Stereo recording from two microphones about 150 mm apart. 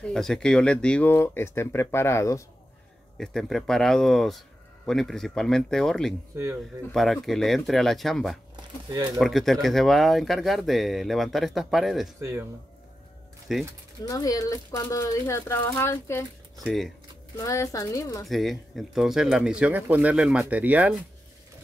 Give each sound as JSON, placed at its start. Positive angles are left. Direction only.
{"t": 0.0, "sound": "speech", "side_deg": 5}
{"t": 3.2, "sound": "speech", "side_deg": 0}
{"t": 6.3, "sound": "speech", "side_deg": -15}
{"t": 6.9, "sound": "speech", "side_deg": 0}
{"t": 8.5, "sound": "speech", "side_deg": -25}
{"t": 9.2, "sound": "speech", "side_deg": 0}
{"t": 12.2, "sound": "speech", "side_deg": -20}
{"t": 13.5, "sound": "speech", "side_deg": 0}
{"t": 14.0, "sound": "speech", "side_deg": 25}
{"t": 16.6, "sound": "speech", "side_deg": 0}
{"t": 17.4, "sound": "speech", "side_deg": 20}
{"t": 18.2, "sound": "speech", "side_deg": 0}